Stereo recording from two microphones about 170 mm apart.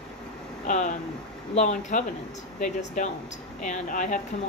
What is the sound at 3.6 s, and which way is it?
Speech, 50° left (ahead or behind).